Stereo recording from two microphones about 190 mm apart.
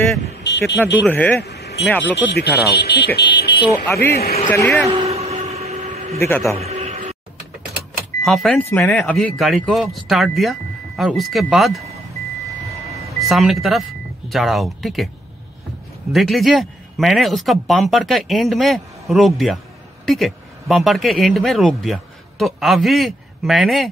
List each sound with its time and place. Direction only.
0.4 s speech: 65° left (ahead or behind)
1.0 s speech: 10° left (ahead or behind)
1.4 s vehicle: 60° left (ahead or behind)
1.9 s speech: 10° left (ahead or behind)
2.1 s speech: 60° left (ahead or behind)
3.2 s vehicle: 60° left (ahead or behind)
3.8 s speech: 15° left (ahead or behind)
5.0 s a sound: 35° right (ahead or behind)
6.1 s speech: 10° left (ahead or behind)
6.6 s a sound: 35° right (ahead or behind)
8.2 s speech: centre (ahead or behind)
13.3 s speech: centre (ahead or behind)
16.1 s speech: centre (ahead or behind)